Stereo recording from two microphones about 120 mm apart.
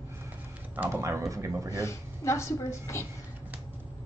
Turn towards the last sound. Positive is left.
turn(degrees=25)  # may be behind; listen again after turning